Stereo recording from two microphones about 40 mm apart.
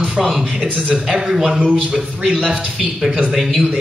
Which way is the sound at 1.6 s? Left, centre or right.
Right.